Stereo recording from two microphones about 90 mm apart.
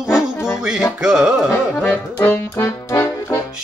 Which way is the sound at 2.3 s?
25° left (ahead or behind).